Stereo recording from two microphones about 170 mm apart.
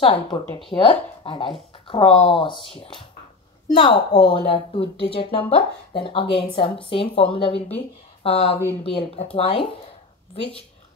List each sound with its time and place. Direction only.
0.0 s speech: 30° left (ahead or behind)